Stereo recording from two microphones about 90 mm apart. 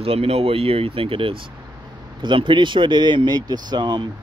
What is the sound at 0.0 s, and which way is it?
Speech, 90° right.